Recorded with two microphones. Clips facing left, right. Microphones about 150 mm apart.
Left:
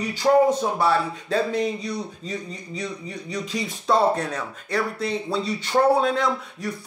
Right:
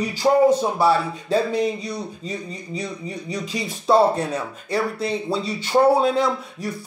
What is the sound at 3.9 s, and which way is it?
Speech, 25° right (ahead or behind).